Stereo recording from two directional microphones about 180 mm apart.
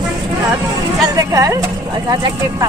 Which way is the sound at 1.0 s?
20° right (ahead or behind).